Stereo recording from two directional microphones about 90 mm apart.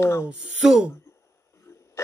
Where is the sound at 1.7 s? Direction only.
25° left (ahead or behind).